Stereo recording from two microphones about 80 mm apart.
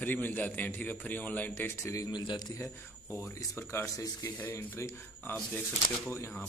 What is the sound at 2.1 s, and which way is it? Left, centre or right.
Speech, left.